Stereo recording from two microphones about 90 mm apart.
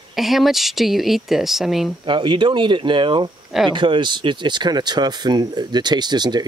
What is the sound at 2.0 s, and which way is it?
Speech, 65° right (ahead or behind).